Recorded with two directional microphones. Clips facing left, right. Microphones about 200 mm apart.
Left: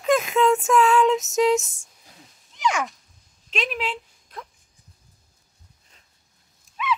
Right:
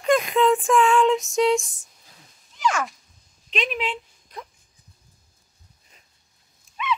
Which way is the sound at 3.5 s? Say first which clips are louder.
Right 1 dB; centre (ahead or behind).